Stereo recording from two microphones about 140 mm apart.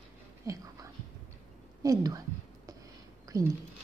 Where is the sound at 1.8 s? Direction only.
25° right (ahead or behind).